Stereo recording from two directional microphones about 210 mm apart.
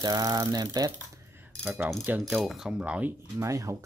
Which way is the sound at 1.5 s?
Centre (ahead or behind).